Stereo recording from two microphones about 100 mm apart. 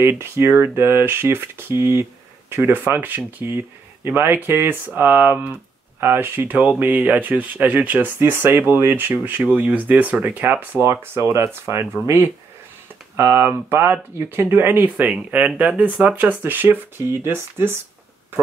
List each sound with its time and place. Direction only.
0.2 s speech: 25° right (ahead or behind)
13.1 s speech: 25° right (ahead or behind)